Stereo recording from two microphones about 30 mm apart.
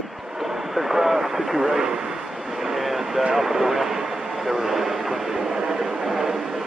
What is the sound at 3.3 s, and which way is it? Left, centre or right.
Speech, centre.